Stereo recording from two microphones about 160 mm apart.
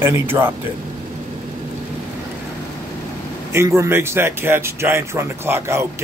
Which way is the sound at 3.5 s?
15° right (ahead or behind).